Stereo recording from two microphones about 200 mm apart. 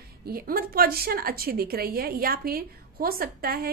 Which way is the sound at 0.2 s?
50° right (ahead or behind).